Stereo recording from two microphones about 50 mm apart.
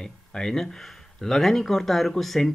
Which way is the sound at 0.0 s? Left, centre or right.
Centre.